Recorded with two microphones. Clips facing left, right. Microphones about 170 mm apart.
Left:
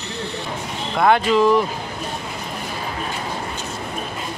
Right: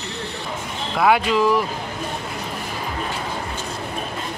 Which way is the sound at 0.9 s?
5° right (ahead or behind).